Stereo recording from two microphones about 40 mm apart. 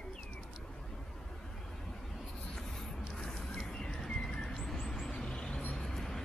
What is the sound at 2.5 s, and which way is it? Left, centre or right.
Writing, centre.